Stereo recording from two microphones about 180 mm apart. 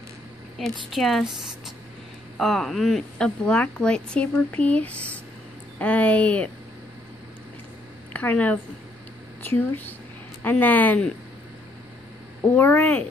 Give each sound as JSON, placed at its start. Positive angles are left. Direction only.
{"t": 0.6, "sound": "a woman's voice", "side_deg": 0}
{"t": 2.3, "sound": "a woman's voice", "side_deg": 0}
{"t": 8.1, "sound": "speech", "side_deg": 10}
{"t": 12.4, "sound": "speech", "side_deg": 10}